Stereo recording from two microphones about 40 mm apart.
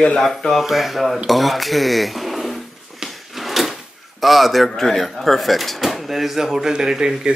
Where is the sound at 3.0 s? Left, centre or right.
Centre.